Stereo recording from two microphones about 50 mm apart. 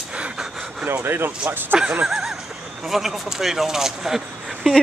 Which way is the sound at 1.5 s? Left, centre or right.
Right.